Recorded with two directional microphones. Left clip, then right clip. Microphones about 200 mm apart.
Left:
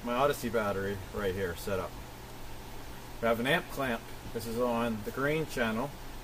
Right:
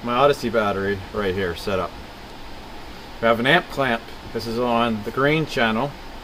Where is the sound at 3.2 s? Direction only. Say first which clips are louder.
Right 12 dB; 30° right (ahead or behind).